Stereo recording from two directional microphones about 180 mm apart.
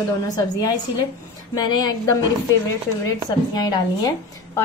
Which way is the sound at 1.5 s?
25° left (ahead or behind).